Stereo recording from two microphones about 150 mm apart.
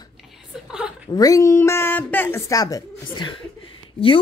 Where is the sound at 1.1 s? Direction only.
25° left (ahead or behind).